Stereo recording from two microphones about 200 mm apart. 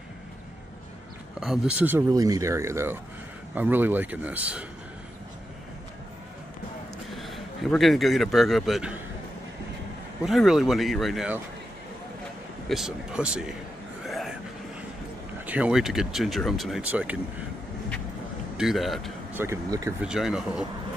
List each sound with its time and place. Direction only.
1.4 s speech: 5° right (ahead or behind)
7.1 s a man's voice: centre (ahead or behind)
10.2 s speech: centre (ahead or behind)
12.6 s speech: centre (ahead or behind)
14.0 s a sound: centre (ahead or behind)
15.4 s speech: 5° right (ahead or behind)
18.6 s speech: centre (ahead or behind)
19.3 s speech: 15° right (ahead or behind)
20.1 s speech: 5° right (ahead or behind)